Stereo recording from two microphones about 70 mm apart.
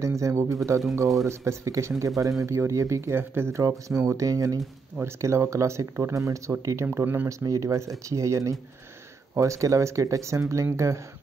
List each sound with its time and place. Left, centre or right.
0.0 s speech: right
3.6 s speech: right
5.0 s speech: right
6.9 s speech: right
7.2 s speech: right